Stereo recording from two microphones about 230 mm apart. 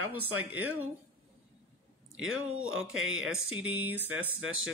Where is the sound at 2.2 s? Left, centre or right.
Right.